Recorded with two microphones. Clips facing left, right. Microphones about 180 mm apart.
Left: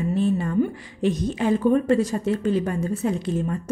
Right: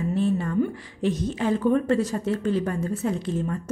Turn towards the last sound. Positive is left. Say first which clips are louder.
# left 2 dB
turn(degrees=15)  # may be behind; listen again after turning